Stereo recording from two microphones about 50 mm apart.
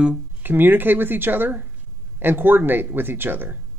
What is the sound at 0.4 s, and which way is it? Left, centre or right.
Speech, right.